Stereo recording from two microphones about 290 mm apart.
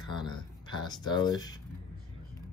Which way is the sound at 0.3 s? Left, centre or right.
Centre.